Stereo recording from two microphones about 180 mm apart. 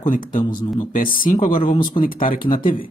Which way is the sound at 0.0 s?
45° left (ahead or behind).